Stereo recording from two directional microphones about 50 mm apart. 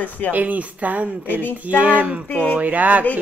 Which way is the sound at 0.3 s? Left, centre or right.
Right.